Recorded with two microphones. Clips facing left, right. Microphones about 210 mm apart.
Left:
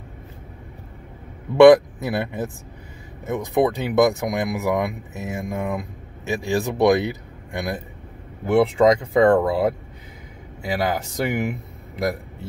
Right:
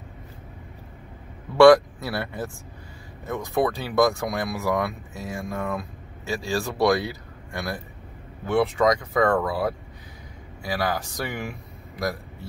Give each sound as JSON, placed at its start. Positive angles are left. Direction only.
{"t": 1.6, "sound": "speech", "side_deg": 20}